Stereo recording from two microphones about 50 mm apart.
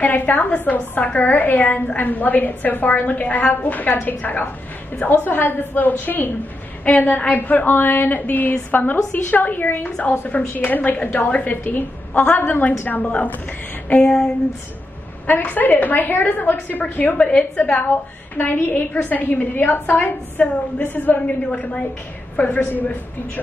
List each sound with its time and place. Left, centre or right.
0.0 s a woman's voice: left
14.0 s speech: centre
15.2 s a woman's voice: left